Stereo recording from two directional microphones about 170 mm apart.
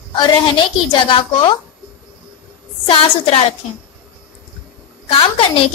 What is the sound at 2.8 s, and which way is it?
Speech, 35° left (ahead or behind).